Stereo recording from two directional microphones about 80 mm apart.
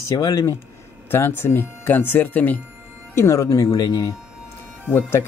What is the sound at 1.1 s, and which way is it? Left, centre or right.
Speech, left.